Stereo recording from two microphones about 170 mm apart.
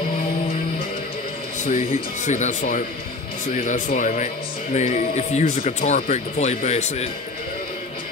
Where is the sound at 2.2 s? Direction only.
45° left (ahead or behind).